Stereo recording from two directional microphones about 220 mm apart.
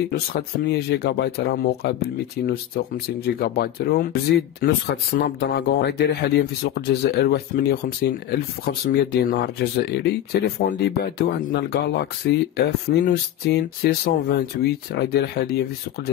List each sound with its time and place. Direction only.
0.1 s speech: 45° left (ahead or behind)